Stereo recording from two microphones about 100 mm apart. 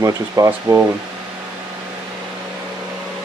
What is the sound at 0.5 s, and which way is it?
Speech, 25° right (ahead or behind).